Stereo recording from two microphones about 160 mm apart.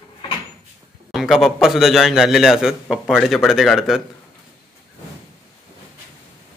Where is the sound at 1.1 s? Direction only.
Centre (ahead or behind).